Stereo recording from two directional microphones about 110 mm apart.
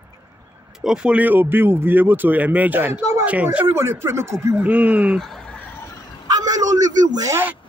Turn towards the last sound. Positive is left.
turn(degrees=-35)  # may be behind; listen again after turning